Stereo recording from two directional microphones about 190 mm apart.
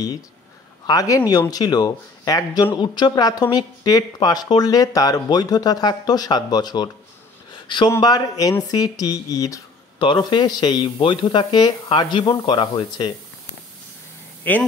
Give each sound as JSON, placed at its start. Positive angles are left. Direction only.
{"t": 0.8, "sound": "speech", "side_deg": 20}
{"t": 14.5, "sound": "speech", "side_deg": 10}